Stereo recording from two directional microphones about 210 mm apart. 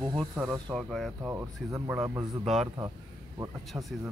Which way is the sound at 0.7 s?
Centre (ahead or behind).